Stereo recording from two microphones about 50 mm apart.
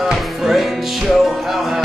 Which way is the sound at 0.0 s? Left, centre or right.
Centre.